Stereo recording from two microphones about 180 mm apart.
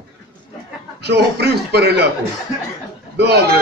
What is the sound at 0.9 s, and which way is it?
A man's voice, 65° right (ahead or behind).